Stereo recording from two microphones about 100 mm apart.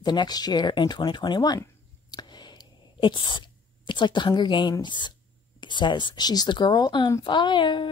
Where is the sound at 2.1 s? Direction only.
45° left (ahead or behind).